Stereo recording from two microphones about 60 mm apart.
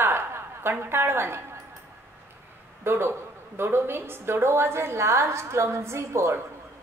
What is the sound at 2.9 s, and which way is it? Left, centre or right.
A woman's voice, right.